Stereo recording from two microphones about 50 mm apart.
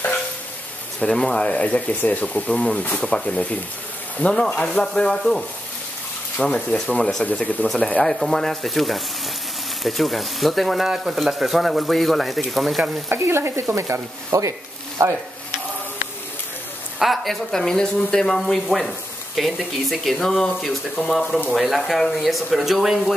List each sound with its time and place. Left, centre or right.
0.9 s speech: centre
6.5 s speech: left
7.6 s speech: centre
13.1 s stir: right
13.7 s speech: right
17.0 s speech: centre